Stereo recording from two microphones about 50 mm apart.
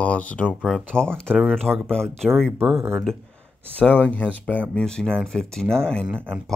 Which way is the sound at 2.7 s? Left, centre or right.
Right.